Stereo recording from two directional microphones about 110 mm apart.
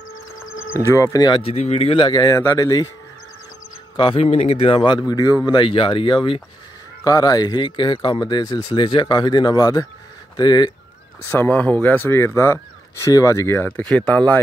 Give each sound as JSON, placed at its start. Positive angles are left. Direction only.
{"t": 0.8, "sound": "speech", "side_deg": 25}
{"t": 1.3, "sound": "speech", "side_deg": 70}
{"t": 3.9, "sound": "speech", "side_deg": 50}
{"t": 7.1, "sound": "speech", "side_deg": 35}
{"t": 11.2, "sound": "speech", "side_deg": 20}
{"t": 13.7, "sound": "speech", "side_deg": 15}